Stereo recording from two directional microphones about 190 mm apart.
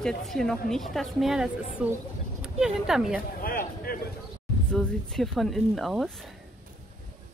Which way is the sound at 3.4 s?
50° left (ahead or behind).